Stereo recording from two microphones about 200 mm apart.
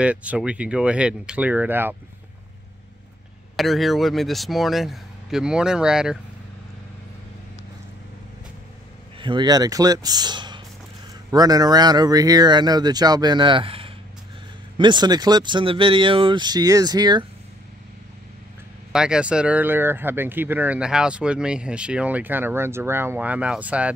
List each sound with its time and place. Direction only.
0.0 s speech: 5° right (ahead or behind)
3.5 s speech: centre (ahead or behind)
9.2 s speech: 20° right (ahead or behind)
18.9 s speech: 5° right (ahead or behind)